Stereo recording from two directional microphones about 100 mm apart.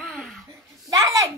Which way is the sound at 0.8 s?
35° right (ahead or behind).